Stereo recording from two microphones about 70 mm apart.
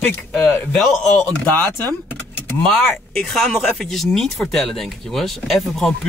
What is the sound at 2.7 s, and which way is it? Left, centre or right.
Speech, centre.